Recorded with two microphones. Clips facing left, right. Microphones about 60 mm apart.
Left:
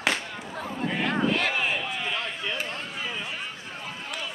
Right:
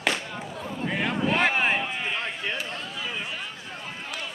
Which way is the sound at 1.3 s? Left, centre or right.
Right.